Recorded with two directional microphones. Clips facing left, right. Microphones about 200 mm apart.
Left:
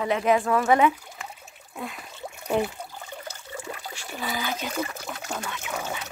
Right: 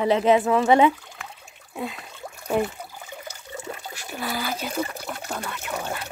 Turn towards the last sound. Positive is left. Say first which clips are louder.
# right 2 dB
turn(degrees=0)  # may be behind; listen again after turning